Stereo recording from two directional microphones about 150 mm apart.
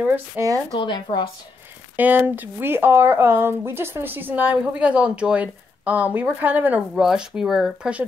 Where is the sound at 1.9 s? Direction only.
10° right (ahead or behind).